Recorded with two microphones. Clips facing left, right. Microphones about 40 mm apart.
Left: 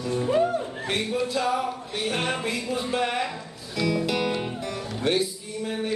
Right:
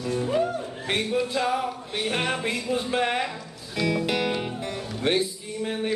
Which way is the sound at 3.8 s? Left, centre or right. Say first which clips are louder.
Even; right.